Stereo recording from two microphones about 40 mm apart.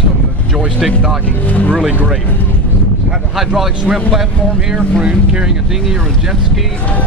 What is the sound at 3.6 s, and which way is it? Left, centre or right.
Speech, centre.